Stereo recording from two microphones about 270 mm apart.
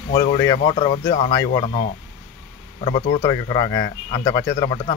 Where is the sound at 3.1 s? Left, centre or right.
Centre.